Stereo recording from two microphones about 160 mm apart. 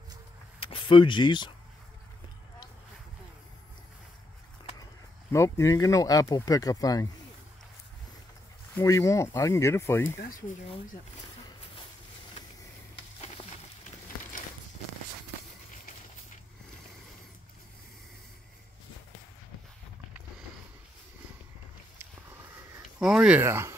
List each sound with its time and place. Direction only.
0.6 s speech: 35° left (ahead or behind)
5.3 s speech: 20° left (ahead or behind)
8.7 s speech: 20° left (ahead or behind)
22.8 s speech: 5° right (ahead or behind)